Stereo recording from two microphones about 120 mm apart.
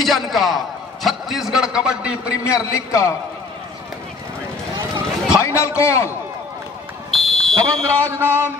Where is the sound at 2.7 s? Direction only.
25° left (ahead or behind).